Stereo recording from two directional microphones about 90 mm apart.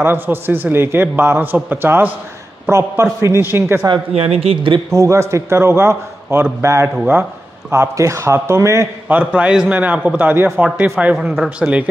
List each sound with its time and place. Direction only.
0.0 s a man's voice: 25° right (ahead or behind)
4.2 s speech: 90° right
4.9 s a man's voice: 35° right (ahead or behind)
9.1 s a man's voice: 15° right (ahead or behind)
11.1 s a man's voice: 5° right (ahead or behind)